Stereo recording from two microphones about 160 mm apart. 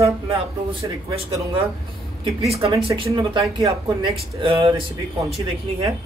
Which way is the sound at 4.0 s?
35° right (ahead or behind).